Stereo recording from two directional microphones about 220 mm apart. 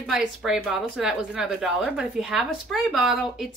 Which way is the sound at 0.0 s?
Centre (ahead or behind).